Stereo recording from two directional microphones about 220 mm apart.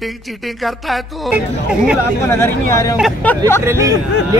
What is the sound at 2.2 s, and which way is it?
Speech, 10° left (ahead or behind).